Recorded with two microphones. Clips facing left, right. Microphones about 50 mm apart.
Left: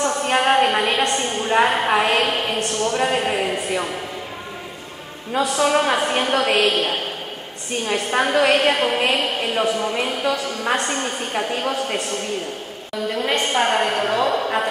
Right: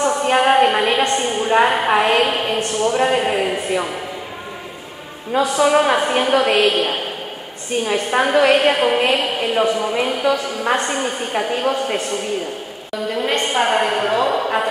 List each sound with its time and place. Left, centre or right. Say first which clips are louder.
0.0 s a woman's voice: right 3 dB; centre
5.3 s a woman's voice: right 3 dB; centre